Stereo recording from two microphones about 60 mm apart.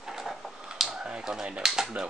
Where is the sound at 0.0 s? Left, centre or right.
Centre.